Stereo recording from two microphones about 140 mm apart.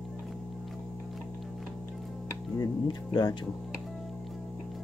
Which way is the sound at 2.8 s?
35° left (ahead or behind).